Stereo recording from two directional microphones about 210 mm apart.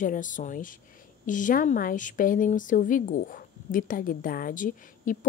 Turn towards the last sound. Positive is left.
turn(degrees=40)  # may be behind; listen again after turning